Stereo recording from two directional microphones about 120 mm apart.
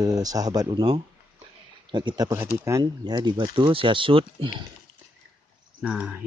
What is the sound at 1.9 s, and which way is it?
Speech, 40° right (ahead or behind).